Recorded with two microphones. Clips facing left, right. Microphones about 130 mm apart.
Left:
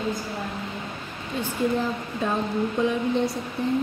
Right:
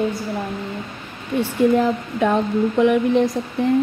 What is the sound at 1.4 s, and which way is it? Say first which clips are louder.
Speech: right 8 dB; 75° right (ahead or behind).